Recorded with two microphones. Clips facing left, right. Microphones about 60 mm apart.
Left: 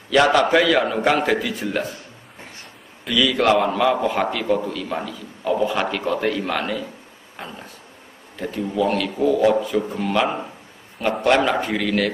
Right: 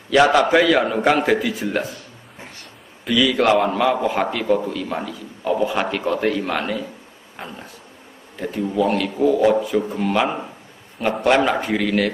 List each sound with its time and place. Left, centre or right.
0.1 s a man's voice: centre
3.1 s a man's voice: centre